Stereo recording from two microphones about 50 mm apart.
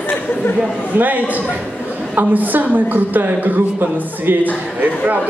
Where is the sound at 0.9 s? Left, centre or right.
Right.